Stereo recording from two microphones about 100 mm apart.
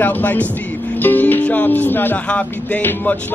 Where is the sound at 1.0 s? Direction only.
20° left (ahead or behind).